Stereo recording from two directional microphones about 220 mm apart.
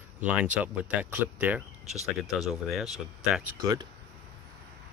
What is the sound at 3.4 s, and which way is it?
Speech, 10° right (ahead or behind).